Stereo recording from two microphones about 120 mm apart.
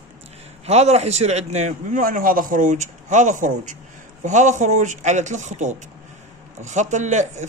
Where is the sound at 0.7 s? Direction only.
65° right (ahead or behind).